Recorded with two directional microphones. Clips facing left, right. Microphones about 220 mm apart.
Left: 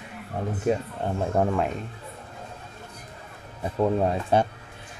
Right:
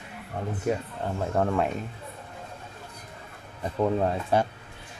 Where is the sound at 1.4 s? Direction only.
15° left (ahead or behind).